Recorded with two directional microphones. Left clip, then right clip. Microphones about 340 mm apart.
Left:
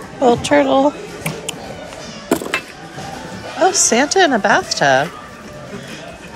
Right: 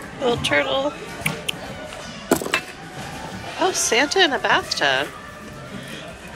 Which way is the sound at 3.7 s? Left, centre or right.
Left.